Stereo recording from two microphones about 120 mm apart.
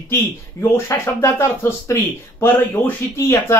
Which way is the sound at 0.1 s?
20° left (ahead or behind).